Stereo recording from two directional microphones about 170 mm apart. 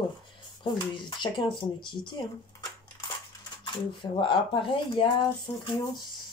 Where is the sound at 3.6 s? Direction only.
30° left (ahead or behind).